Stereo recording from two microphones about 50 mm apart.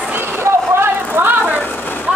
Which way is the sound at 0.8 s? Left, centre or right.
Right.